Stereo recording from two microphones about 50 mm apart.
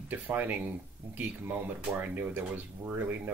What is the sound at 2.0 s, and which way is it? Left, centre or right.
Speech, right.